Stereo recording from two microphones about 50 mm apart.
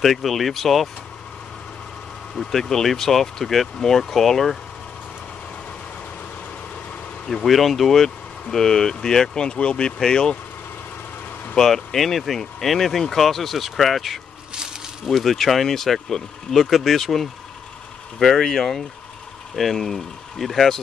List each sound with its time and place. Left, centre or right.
0.0 s speech: centre
2.3 s speech: centre
7.4 s speech: centre
11.5 s speech: centre
14.5 s a sound: centre
15.0 s speech: centre